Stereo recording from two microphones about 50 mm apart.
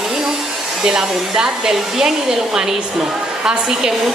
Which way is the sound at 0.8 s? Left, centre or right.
Centre.